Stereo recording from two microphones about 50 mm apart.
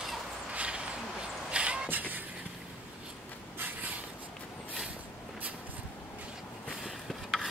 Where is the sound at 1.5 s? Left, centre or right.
Right.